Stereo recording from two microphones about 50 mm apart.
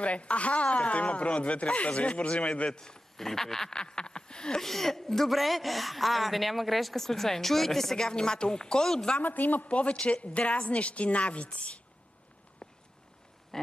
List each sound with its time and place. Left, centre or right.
0.0 s speech: left
9.2 s a woman's voice: left
12.6 s walk: centre